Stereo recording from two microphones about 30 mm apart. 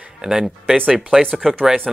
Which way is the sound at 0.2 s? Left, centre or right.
Centre.